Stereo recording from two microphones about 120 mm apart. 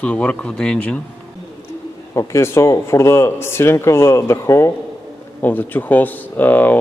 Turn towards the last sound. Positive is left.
turn(degrees=15)  # may be behind; listen again after turning